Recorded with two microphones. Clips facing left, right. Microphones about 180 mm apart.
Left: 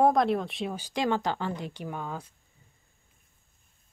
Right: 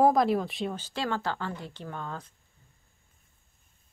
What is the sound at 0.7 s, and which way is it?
Speech, 15° left (ahead or behind).